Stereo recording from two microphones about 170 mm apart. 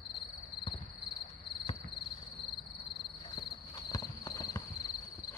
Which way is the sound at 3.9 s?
20° left (ahead or behind).